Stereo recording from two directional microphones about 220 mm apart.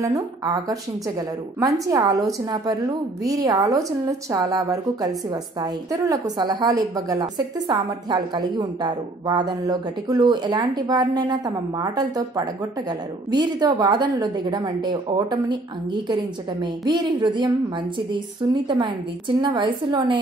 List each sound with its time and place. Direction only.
0.0 s a woman's voice: 15° right (ahead or behind)
1.9 s a woman's voice: 15° right (ahead or behind)
18.5 s a woman's voice: 20° right (ahead or behind)